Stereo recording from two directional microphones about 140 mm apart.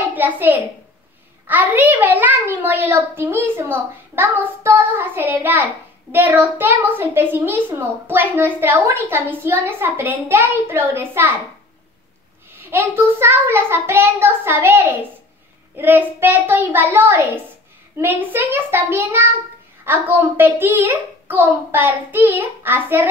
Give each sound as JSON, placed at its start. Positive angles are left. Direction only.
{"t": 0.1, "sound": "a child's voice", "side_deg": -15}
{"t": 12.6, "sound": "a child's voice", "side_deg": -15}